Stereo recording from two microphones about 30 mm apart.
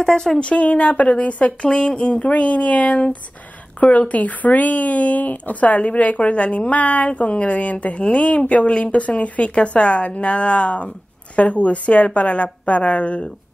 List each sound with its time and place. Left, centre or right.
0.0 s speech: left
0.4 s speech: left